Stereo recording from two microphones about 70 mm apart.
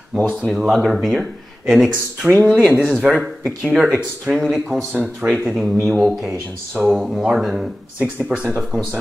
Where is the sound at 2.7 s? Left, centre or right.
Centre.